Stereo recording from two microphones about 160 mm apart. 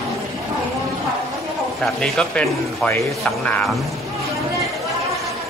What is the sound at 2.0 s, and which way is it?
Speech, 5° left (ahead or behind).